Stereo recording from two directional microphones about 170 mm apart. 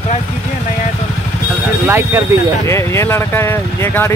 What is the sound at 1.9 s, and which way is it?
Speech, 15° right (ahead or behind).